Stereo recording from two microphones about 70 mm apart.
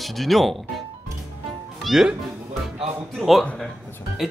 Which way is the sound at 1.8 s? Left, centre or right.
Centre.